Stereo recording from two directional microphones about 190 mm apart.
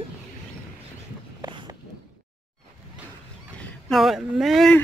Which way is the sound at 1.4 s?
20° right (ahead or behind).